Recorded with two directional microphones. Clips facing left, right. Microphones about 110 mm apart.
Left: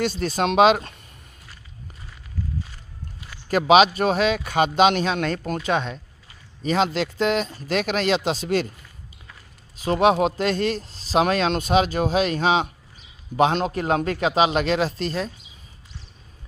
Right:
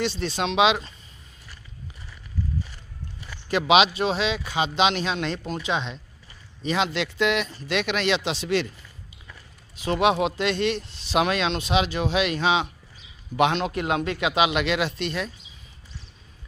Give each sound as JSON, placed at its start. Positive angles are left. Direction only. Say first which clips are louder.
{"t": 0.0, "sound": "speech", "louder": "left 3 dB", "side_deg": 45}
{"t": 3.4, "sound": "speech", "louder": "left 4 dB", "side_deg": 45}
{"t": 9.8, "sound": "speech", "louder": "left 3 dB", "side_deg": 40}